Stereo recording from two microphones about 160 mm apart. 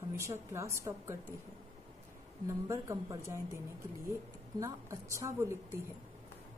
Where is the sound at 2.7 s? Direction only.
20° right (ahead or behind).